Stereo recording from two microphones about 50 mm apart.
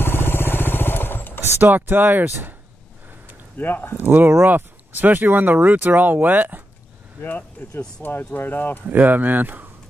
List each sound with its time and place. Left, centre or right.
0.0 s vehicle: left
1.4 s speech: right
3.5 s speech: left
3.9 s speech: right
7.2 s speech: left
8.8 s speech: right